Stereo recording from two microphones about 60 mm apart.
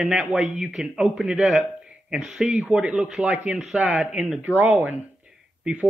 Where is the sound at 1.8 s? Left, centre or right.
Centre.